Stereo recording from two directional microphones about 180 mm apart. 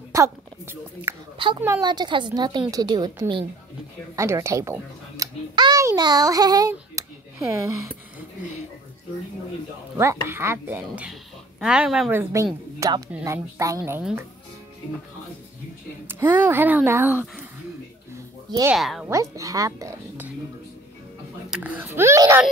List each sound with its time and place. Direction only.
0.1 s a woman's voice: 15° right (ahead or behind)
4.2 s a child's voice: 15° right (ahead or behind)
9.9 s speech: 15° right (ahead or behind)
16.1 s speech: 10° right (ahead or behind)
18.7 s speech: centre (ahead or behind)
19.0 s speech: 15° right (ahead or behind)
21.5 s speech: 5° right (ahead or behind)